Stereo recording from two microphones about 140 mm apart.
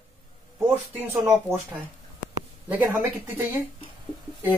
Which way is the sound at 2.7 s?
10° right (ahead or behind).